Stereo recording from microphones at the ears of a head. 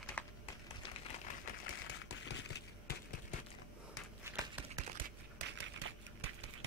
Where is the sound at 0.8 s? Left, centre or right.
Left.